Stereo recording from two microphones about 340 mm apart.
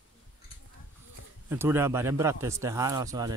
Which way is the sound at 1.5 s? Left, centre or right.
Centre.